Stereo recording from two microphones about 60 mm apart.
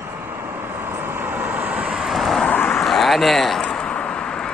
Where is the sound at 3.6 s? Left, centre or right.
Centre.